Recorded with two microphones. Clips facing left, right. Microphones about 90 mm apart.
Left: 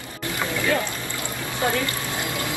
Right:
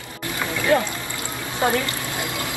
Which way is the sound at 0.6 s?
20° right (ahead or behind).